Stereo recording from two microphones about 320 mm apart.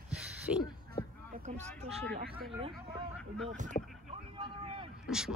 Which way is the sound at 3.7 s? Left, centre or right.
Left.